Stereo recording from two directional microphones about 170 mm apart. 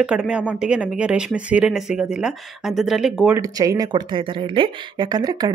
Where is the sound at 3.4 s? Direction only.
20° right (ahead or behind).